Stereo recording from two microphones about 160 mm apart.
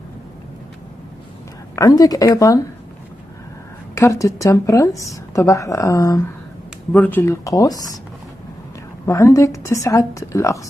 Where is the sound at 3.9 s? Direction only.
20° left (ahead or behind).